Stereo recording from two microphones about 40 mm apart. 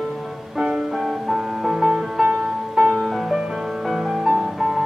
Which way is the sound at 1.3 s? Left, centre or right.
Centre.